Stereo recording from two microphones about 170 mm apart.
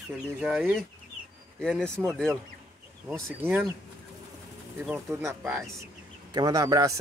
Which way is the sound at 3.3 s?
15° right (ahead or behind).